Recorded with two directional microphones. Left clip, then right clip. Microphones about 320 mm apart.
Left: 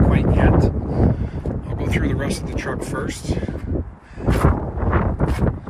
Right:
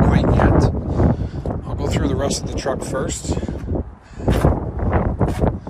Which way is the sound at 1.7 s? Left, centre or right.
Centre.